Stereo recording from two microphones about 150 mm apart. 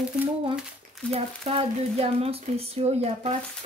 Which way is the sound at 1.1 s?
40° right (ahead or behind).